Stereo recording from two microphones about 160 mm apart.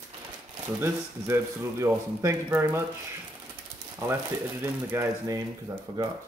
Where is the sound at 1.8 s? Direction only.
20° right (ahead or behind).